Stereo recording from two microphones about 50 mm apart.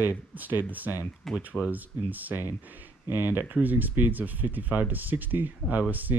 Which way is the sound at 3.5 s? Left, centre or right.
Right.